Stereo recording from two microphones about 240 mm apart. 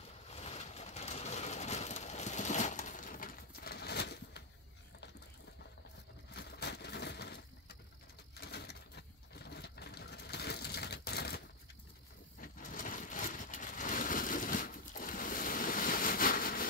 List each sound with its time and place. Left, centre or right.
0.3 s a sound: left
6.3 s vehicle: left
8.4 s sewing machine: left
12.4 s vehicle: left